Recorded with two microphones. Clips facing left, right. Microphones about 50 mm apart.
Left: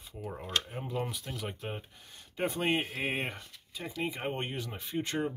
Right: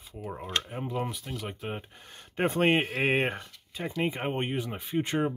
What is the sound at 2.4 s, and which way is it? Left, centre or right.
Speech, right.